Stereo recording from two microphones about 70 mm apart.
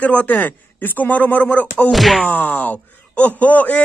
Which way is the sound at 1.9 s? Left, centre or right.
Centre.